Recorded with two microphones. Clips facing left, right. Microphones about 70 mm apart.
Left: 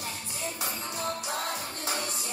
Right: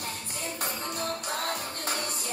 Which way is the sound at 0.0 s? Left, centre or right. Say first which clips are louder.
Even; right.